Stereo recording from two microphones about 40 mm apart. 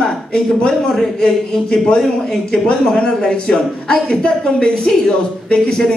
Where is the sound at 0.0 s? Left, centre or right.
Centre.